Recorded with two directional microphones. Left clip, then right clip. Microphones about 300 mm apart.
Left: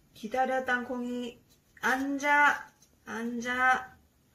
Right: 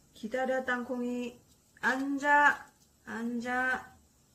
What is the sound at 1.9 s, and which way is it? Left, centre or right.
Speech, centre.